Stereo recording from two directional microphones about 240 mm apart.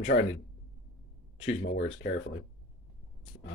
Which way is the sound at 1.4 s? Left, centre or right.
Left.